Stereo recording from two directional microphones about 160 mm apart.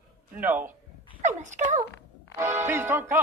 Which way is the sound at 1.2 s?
50° right (ahead or behind).